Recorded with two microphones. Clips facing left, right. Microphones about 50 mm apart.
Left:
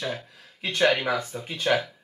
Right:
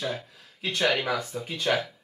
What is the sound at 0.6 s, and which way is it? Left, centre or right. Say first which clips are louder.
Speech: left 3 dB; centre.